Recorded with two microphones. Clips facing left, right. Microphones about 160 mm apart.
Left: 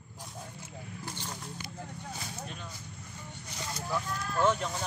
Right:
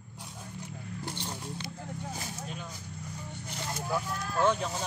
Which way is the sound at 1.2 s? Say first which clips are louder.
Right 3 dB; 20° right (ahead or behind).